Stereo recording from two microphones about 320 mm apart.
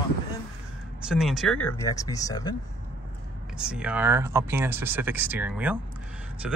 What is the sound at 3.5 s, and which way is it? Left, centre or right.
Speech, centre.